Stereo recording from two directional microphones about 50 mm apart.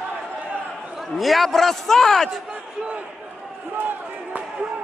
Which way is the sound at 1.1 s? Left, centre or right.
Centre.